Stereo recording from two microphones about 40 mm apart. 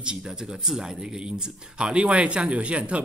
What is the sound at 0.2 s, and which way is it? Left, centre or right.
Speech, centre.